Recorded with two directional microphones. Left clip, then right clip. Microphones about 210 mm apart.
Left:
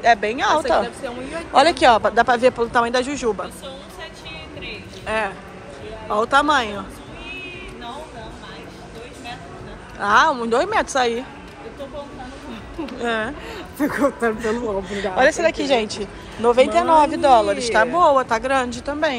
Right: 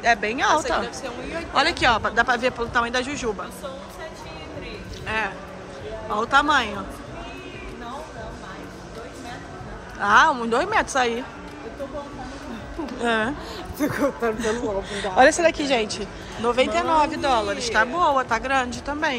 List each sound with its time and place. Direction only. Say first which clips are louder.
0.0 s a woman's voice: left 3 dB; 5° right (ahead or behind)
5.0 s a woman's voice: left 3 dB; centre (ahead or behind)
9.9 s a woman's voice: left 1 dB; 10° right (ahead or behind)
13.0 s a woman's voice: even; 15° right (ahead or behind)
13.7 s speech: left 4 dB; 25° left (ahead or behind)
15.1 s a woman's voice: right 1 dB; 20° right (ahead or behind)